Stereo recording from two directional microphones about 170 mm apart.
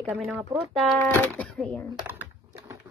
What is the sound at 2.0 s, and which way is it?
Typing, 10° right (ahead or behind).